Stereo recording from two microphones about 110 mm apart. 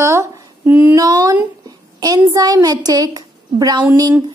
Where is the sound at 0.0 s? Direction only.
25° right (ahead or behind).